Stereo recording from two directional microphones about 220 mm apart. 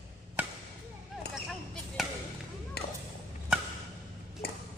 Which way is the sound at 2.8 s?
45° left (ahead or behind).